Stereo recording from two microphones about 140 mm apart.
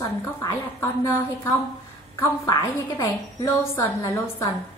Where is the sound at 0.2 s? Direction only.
15° left (ahead or behind).